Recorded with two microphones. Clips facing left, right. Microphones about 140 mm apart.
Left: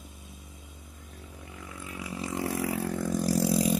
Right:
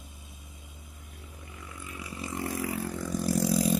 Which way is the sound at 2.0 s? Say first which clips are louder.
Left 3 dB; 90° left.